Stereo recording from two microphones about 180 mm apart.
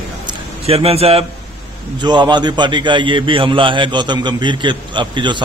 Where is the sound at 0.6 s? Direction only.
35° right (ahead or behind).